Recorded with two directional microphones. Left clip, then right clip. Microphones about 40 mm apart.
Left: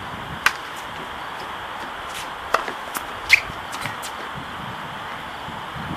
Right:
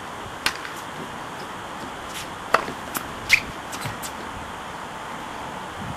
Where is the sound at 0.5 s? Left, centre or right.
Left.